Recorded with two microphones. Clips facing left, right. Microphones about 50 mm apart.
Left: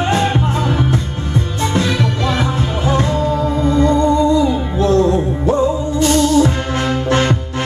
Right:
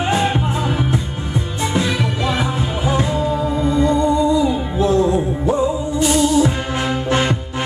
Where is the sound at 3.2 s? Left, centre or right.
Left.